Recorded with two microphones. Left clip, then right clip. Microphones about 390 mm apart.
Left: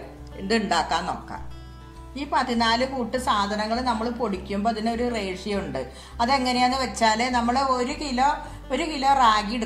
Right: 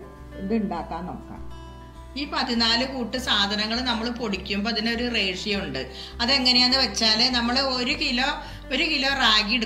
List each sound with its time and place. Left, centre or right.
0.5 s speech: left
2.3 s a woman's voice: centre